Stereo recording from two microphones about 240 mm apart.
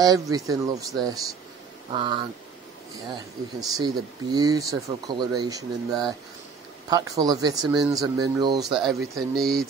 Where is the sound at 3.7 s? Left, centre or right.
Centre.